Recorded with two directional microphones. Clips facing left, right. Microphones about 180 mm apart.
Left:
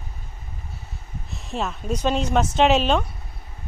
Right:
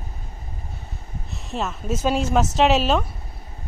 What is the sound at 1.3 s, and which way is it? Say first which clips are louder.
A woman's voice: even; centre (ahead or behind).